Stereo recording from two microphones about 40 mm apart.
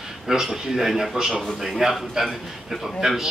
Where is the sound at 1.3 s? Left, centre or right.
Centre.